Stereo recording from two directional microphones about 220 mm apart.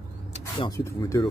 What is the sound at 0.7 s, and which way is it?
Speech, 15° left (ahead or behind).